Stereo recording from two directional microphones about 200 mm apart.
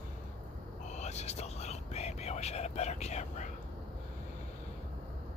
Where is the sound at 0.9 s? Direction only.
35° left (ahead or behind).